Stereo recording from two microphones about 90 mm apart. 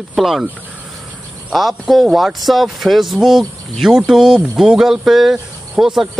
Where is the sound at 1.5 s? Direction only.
Centre (ahead or behind).